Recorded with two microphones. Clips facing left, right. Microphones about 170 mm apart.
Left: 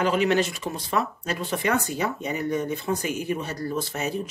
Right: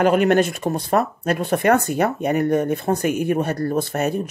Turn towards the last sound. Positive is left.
turn(degrees=-55)  # may be behind; listen again after turning